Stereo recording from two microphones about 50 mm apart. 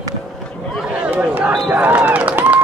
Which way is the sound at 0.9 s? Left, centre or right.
Right.